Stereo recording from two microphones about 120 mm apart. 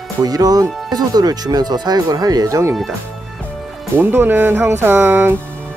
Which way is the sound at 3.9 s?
15° right (ahead or behind).